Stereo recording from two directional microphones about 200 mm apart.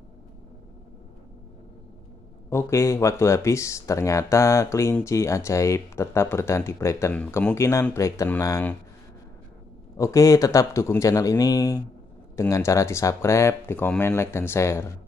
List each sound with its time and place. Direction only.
2.5 s speech: 15° left (ahead or behind)
9.9 s speech: 15° left (ahead or behind)